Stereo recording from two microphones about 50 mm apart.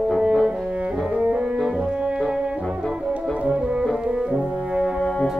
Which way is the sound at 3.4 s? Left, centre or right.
Right.